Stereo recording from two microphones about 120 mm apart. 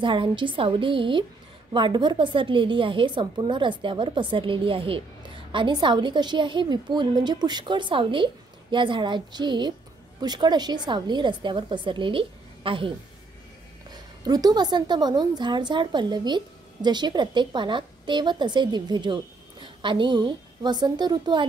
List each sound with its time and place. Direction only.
0.0 s a woman's voice: 40° right (ahead or behind)
13.9 s a woman's voice: 35° right (ahead or behind)